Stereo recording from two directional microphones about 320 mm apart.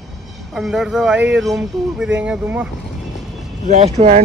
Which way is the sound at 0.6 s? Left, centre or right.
Centre.